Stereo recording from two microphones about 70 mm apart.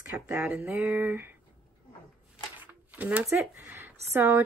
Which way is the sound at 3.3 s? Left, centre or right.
Right.